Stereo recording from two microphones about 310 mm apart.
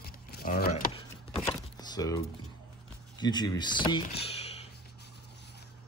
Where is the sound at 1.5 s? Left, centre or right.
Centre.